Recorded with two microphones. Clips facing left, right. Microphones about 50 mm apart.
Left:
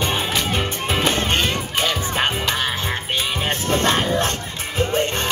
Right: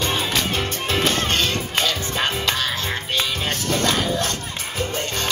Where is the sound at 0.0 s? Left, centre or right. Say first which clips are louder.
Left 1 dB; centre.